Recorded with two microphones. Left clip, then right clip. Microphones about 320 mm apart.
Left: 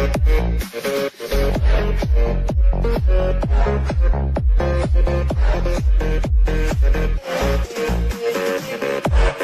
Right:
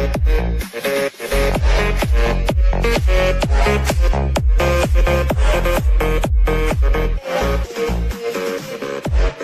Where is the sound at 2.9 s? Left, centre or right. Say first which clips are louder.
Right 5 dB; right.